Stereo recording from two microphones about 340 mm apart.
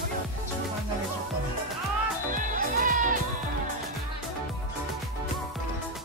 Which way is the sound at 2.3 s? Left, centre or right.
Right.